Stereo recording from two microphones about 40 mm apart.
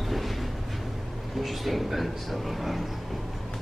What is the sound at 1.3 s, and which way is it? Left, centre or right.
Speech, centre.